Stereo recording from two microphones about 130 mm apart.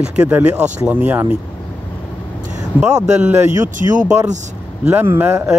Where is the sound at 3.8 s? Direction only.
50° left (ahead or behind).